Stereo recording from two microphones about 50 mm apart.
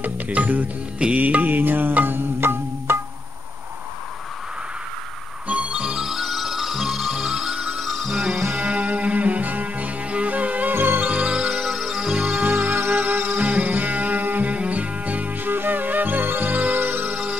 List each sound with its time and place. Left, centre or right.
0.0 s music: right
5.5 s music: right
5.9 s music: centre
8.6 s music: right
11.1 s music: right
11.5 s music: centre
12.4 s music: right
13.4 s music: right